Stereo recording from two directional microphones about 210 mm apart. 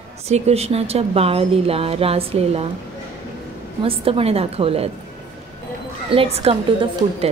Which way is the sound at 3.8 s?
25° right (ahead or behind).